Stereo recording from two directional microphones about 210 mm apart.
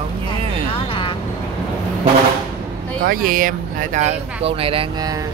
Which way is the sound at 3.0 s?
40° right (ahead or behind).